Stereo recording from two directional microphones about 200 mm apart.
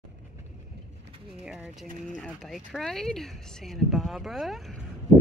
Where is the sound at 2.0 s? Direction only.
Centre (ahead or behind).